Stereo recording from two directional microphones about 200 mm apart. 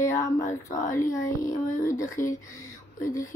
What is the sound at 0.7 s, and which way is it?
Speech, 15° left (ahead or behind).